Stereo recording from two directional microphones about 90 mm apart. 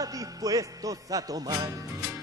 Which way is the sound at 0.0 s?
40° right (ahead or behind).